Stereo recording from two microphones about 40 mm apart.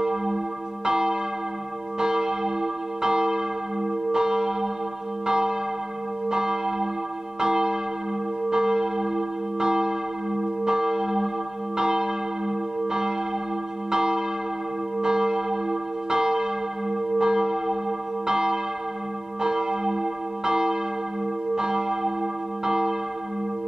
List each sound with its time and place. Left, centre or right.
0.0 s church bell: centre